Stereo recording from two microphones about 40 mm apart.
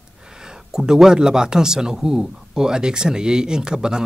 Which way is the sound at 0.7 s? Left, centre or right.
Centre.